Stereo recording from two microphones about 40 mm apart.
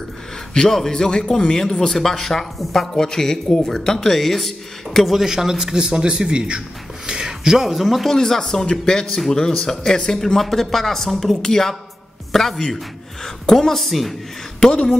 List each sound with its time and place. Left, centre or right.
0.6 s a man's voice: centre
5.2 s speech: centre
8.1 s speech: centre
14.6 s speech: left